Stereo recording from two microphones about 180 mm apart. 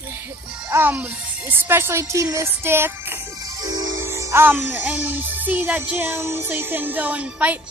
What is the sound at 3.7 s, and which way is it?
Music, 90° right.